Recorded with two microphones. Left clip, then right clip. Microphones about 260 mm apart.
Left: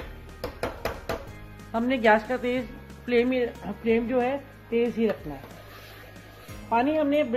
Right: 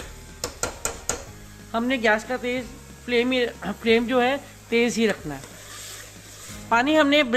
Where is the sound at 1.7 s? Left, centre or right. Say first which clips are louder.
Even; centre; by 5.2 s right.